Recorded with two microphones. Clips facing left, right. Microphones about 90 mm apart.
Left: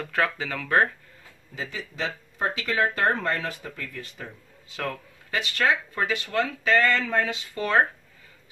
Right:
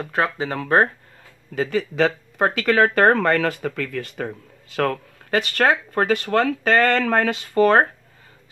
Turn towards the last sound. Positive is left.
turn(degrees=-50)  # may be behind; listen again after turning